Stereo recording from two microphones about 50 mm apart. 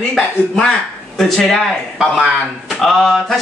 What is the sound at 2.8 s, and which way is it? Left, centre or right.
Speech, centre.